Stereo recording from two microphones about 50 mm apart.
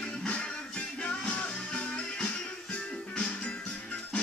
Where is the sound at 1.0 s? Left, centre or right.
Left.